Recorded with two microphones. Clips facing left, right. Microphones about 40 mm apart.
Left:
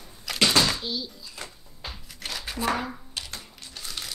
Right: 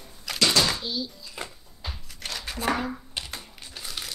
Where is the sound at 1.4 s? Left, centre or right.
Centre.